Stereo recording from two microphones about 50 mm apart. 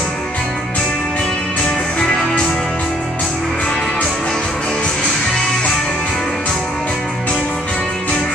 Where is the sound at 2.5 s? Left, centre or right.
Centre.